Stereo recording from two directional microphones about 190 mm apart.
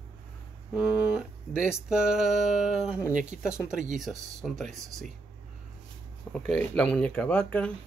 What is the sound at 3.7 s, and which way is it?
Speech, 40° right (ahead or behind).